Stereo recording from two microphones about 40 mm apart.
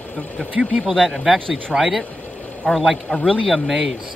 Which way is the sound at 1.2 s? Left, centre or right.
Centre.